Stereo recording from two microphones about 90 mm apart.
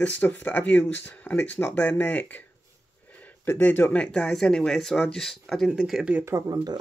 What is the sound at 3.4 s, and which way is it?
Speech, 25° left (ahead or behind).